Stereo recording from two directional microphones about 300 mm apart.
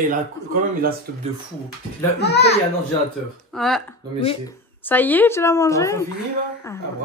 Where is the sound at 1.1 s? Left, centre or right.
Right.